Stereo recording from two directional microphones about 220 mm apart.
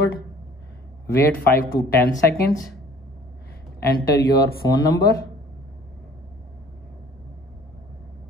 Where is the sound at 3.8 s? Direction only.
45° left (ahead or behind).